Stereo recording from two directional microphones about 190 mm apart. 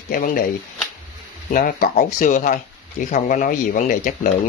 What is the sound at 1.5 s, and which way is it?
Speech, 45° left (ahead or behind).